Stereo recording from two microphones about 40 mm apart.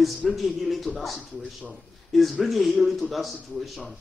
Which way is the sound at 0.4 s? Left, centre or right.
Centre.